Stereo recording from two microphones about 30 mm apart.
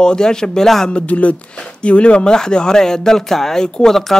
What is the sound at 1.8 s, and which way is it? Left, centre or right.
Speech, left.